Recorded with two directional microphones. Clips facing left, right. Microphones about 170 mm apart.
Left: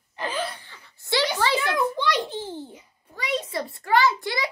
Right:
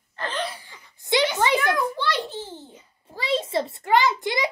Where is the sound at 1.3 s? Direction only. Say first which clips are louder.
Right 2 dB; 15° right (ahead or behind).